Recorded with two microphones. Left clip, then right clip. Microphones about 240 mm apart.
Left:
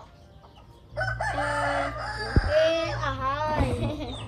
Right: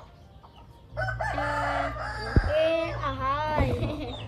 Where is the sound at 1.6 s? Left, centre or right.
Left.